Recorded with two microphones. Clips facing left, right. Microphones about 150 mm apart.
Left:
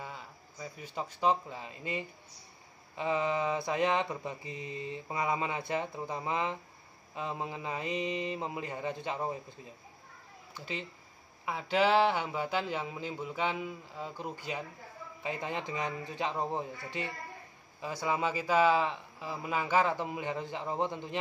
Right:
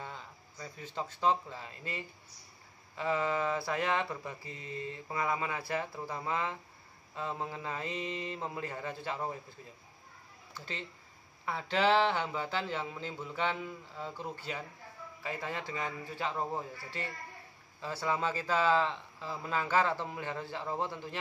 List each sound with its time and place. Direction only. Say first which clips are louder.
0.0 s speech: left 1 dB; 10° left (ahead or behind)
3.0 s mantra: left 1 dB; 20° left (ahead or behind)
7.2 s speech: left 1 dB; 15° left (ahead or behind)
10.5 s speech: left 3 dB; 10° left (ahead or behind)
15.2 s mantra: left 2 dB; 20° left (ahead or behind)
17.7 s speech: left 1 dB; 15° left (ahead or behind)